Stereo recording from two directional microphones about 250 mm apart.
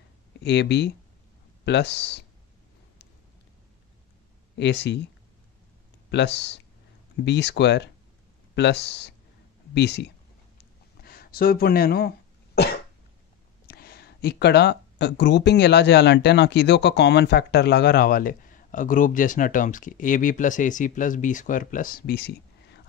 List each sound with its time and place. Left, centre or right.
0.4 s speech: left
4.6 s speech: left
6.0 s speech: left